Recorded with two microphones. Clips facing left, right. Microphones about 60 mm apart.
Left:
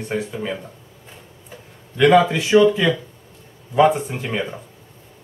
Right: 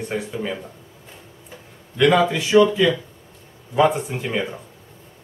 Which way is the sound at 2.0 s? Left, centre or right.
Centre.